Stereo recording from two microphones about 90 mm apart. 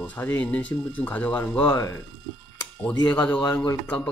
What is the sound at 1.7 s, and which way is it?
Speech, 30° left (ahead or behind).